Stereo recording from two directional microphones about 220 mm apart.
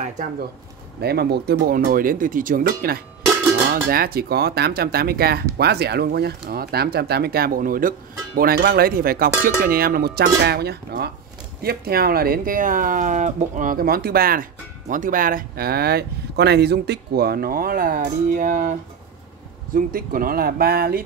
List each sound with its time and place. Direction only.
1.0 s cowbell: 45° right (ahead or behind)
11.6 s speech: 45° right (ahead or behind)